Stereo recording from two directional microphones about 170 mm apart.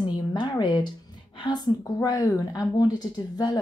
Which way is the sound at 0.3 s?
25° left (ahead or behind).